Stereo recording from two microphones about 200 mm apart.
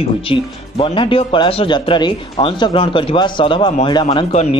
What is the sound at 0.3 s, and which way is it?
Speech, 25° left (ahead or behind).